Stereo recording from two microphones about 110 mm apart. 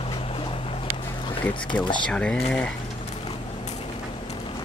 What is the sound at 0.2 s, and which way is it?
Boat, 55° left (ahead or behind).